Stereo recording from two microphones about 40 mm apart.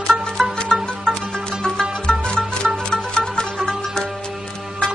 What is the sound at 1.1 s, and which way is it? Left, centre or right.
Music, left.